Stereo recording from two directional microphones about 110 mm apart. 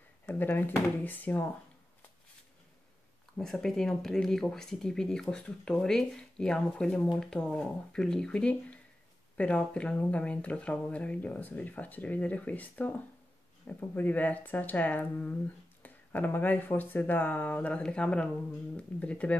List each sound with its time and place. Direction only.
0.3 s speech: 15° left (ahead or behind)
3.3 s speech: 5° left (ahead or behind)